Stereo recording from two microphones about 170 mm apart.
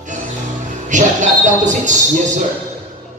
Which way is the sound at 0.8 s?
45° right (ahead or behind).